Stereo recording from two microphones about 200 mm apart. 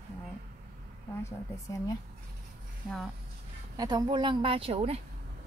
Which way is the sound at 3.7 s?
20° right (ahead or behind).